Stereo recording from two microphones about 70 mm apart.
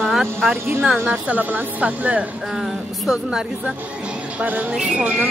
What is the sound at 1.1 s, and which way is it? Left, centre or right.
Speech, right.